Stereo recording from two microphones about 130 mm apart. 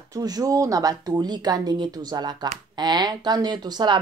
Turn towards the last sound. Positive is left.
turn(degrees=-35)  # may be behind; listen again after turning